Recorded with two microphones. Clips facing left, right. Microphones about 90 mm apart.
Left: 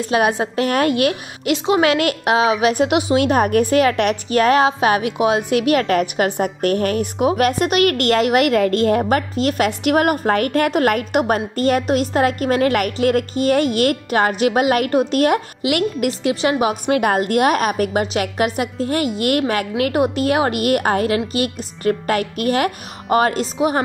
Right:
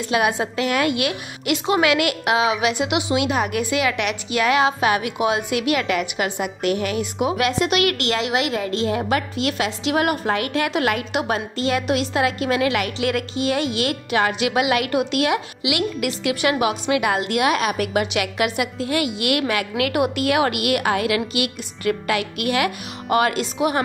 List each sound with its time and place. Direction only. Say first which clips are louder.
0.1 s a woman's voice: left 3 dB; 35° left (ahead or behind)
16.8 s a woman's voice: left 3 dB; 45° left (ahead or behind)